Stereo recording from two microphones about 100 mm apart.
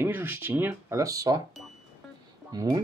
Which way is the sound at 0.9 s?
35° right (ahead or behind).